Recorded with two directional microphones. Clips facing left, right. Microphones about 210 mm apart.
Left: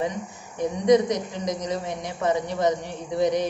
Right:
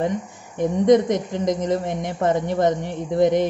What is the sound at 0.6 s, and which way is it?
A woman's voice, 50° right (ahead or behind).